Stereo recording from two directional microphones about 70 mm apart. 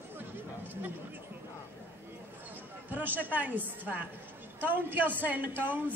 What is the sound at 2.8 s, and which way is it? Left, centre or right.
A man's voice, right.